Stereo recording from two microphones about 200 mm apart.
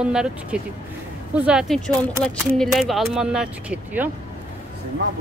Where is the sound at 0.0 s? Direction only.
5° right (ahead or behind).